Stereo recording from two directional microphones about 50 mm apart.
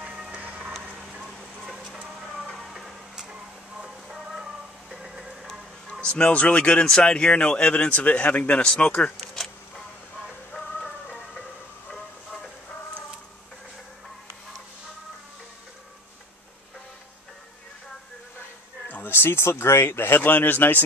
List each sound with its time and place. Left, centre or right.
0.3 s music: right
1.2 s a sound: centre
2.3 s music: centre
5.9 s a sound: centre
6.2 s speech: left
9.1 s vehicle: centre
11.9 s train: centre
19.0 s speech: left